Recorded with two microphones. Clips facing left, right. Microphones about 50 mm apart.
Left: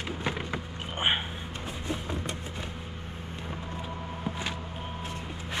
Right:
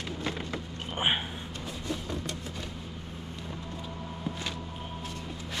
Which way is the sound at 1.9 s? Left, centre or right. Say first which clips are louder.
Left 1 dB; left.